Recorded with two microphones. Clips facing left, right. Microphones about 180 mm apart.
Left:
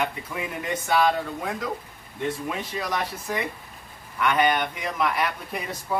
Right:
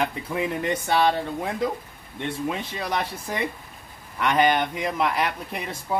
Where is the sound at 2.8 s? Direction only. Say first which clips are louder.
Right 1 dB; 30° right (ahead or behind).